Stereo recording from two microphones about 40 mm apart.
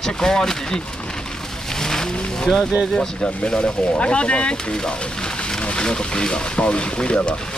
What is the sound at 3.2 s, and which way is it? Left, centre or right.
Speech, left.